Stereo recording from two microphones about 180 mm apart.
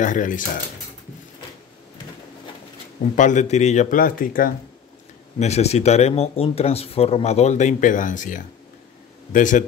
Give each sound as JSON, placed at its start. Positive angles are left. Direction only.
{"t": 0.0, "sound": "speech", "side_deg": 45}
{"t": 3.2, "sound": "speech", "side_deg": 45}
{"t": 5.4, "sound": "speech", "side_deg": 35}